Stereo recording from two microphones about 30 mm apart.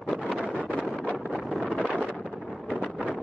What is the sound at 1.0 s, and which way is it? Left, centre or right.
Wind noise, right.